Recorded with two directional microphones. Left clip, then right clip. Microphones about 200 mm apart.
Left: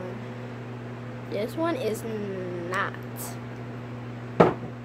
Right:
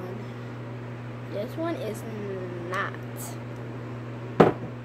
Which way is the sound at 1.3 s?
30° left (ahead or behind).